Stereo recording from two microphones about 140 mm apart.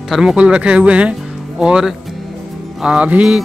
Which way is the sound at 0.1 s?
5° right (ahead or behind).